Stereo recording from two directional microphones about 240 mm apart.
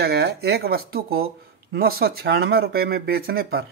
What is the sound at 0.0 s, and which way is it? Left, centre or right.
Speech, right.